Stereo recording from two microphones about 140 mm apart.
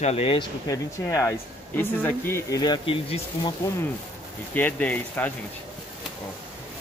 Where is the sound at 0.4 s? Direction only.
25° left (ahead or behind).